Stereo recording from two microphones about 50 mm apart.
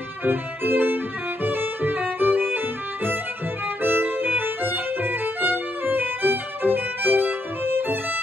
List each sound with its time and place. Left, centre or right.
0.2 s music: right
1.4 s violin: right
3.8 s violin: right